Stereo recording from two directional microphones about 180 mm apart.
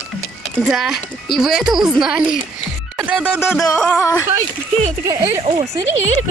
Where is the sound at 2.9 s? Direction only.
5° right (ahead or behind).